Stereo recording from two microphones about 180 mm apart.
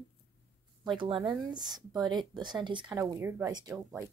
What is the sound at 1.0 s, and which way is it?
Speech, 30° right (ahead or behind).